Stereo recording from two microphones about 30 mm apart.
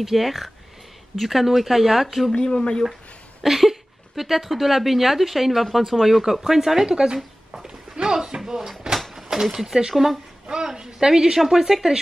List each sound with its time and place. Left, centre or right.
0.0 s speech: centre
2.3 s speech: left
3.4 s speech: centre
6.9 s speech: right
7.6 s a sound: right
8.4 s speech: centre
9.1 s a sound: centre
10.8 s a woman's voice: right